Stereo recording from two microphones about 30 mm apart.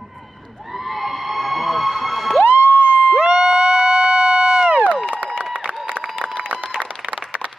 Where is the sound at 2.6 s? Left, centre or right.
Left.